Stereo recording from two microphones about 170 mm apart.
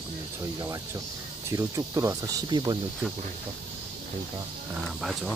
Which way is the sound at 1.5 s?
20° right (ahead or behind).